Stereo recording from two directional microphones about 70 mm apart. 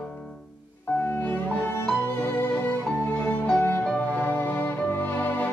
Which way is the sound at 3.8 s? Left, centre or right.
Centre.